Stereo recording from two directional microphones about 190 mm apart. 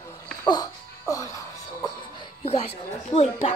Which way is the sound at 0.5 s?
20° left (ahead or behind).